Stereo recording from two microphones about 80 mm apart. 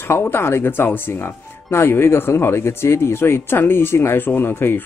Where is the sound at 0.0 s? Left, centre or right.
Left.